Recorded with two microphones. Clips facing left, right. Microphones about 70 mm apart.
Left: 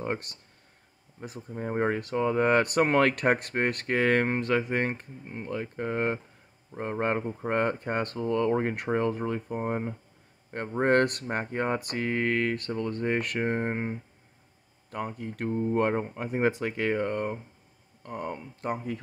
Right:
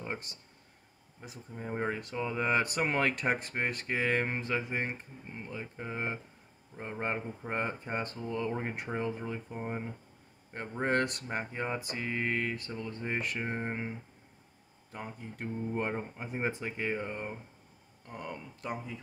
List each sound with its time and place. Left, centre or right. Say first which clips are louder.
0.0 s speech: left 7 dB; left
14.9 s speech: left 8 dB; left
18.0 s speech: left 7 dB; left